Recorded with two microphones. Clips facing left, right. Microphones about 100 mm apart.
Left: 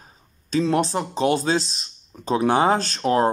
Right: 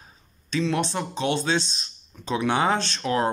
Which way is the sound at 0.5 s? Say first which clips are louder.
Left 4 dB; 40° left (ahead or behind).